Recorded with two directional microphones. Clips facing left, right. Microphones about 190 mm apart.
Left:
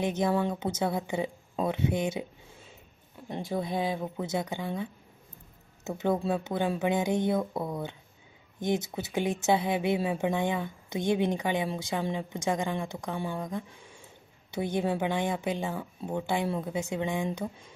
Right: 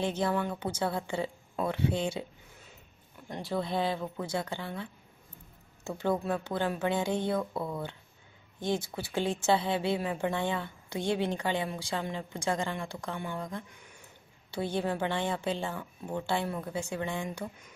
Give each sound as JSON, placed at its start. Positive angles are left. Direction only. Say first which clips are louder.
{"t": 0.0, "sound": "a woman's voice", "louder": "left 3 dB", "side_deg": 15}
{"t": 3.3, "sound": "speech", "louder": "left 1 dB", "side_deg": 15}
{"t": 5.9, "sound": "a woman's voice", "louder": "left 2 dB", "side_deg": 20}
{"t": 13.7, "sound": "a sound", "louder": "left 3 dB", "side_deg": 30}
{"t": 14.5, "sound": "a woman's voice", "louder": "left 2 dB", "side_deg": 15}